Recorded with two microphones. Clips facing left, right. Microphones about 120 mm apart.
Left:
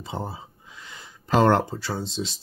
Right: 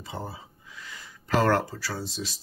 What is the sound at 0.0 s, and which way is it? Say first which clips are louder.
Speech: left 4 dB; 25° left (ahead or behind).